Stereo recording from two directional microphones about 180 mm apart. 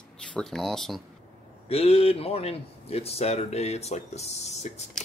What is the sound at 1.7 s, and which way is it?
Speech, 35° left (ahead or behind).